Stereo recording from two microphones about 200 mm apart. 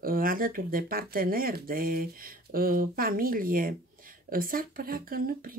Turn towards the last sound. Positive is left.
turn(degrees=-45)  # may be behind; listen again after turning